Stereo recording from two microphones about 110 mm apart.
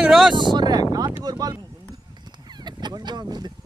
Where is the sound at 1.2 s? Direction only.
35° right (ahead or behind).